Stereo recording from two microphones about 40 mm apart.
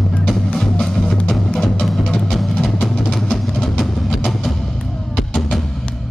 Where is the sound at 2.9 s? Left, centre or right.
Centre.